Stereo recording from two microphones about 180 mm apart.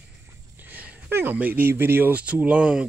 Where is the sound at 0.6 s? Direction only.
10° right (ahead or behind).